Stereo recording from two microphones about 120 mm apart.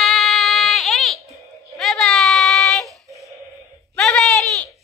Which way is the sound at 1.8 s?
5° left (ahead or behind).